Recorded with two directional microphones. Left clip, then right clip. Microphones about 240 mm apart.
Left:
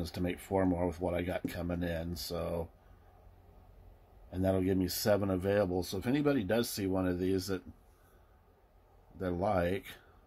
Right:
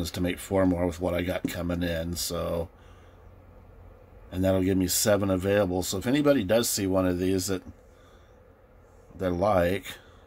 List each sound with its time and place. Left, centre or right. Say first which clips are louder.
0.0 s speech: right 7 dB; centre
4.3 s speech: right 6 dB; centre
9.2 s speech: right 8 dB; centre